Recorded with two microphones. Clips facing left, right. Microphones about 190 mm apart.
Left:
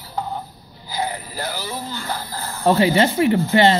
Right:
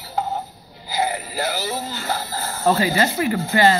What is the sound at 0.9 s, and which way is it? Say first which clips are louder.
Music: right 3 dB; 5° right (ahead or behind).